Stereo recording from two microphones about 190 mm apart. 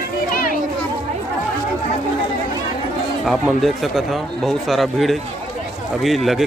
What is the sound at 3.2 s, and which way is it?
Speech, centre (ahead or behind).